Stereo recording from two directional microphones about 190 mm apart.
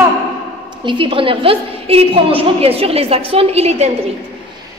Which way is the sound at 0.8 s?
25° right (ahead or behind).